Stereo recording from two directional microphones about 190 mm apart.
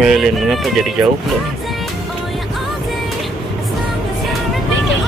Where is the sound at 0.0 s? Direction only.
Centre (ahead or behind).